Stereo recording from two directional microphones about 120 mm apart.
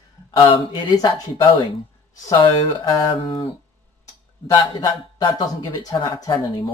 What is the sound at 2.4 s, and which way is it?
Speech, 45° left (ahead or behind).